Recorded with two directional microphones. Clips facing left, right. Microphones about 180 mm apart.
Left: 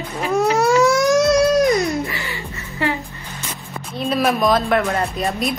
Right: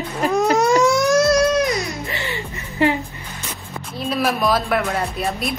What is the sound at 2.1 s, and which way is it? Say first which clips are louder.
Music: right 2 dB; 25° right (ahead or behind).